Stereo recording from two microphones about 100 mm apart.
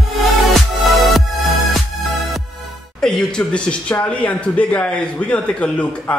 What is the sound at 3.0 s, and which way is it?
A man's voice, 5° left (ahead or behind).